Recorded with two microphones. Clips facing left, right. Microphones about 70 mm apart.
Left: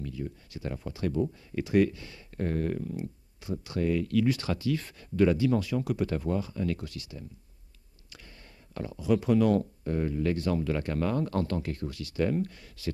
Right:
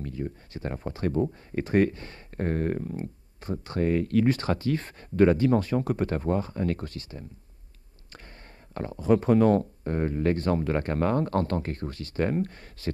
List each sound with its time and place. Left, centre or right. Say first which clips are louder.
0.0 s speech: right 3 dB; right
8.7 s speech: right 4 dB; right